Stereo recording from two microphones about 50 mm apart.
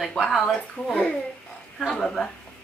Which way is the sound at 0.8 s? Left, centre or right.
Left.